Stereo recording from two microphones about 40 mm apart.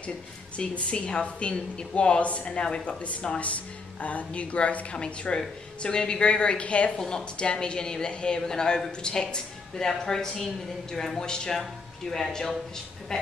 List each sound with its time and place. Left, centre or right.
0.6 s speech: left
3.0 s speech: left
4.9 s speech: left
7.0 s a woman's voice: centre
7.3 s a woman's voice: left